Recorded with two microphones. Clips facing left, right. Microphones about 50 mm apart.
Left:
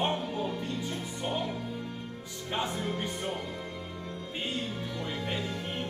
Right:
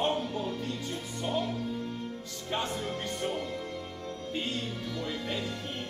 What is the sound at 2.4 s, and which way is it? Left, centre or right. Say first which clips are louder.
Speech: left 1 dB; centre.